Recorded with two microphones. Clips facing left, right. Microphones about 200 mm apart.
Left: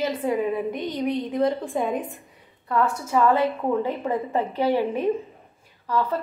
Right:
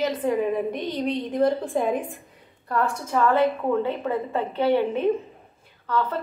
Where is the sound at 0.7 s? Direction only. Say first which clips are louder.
Even; 20° right (ahead or behind).